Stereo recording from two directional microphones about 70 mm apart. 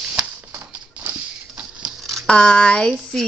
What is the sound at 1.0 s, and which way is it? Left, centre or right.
Printer, right.